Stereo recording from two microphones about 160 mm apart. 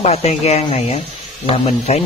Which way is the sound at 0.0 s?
40° left (ahead or behind).